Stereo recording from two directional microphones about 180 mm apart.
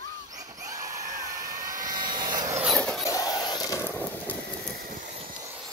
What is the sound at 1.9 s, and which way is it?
Vehicle, 25° right (ahead or behind).